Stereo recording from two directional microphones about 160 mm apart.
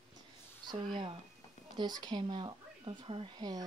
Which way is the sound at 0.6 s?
30° right (ahead or behind).